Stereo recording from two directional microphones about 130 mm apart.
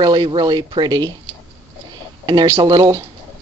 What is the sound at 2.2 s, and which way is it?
Speech, 35° right (ahead or behind).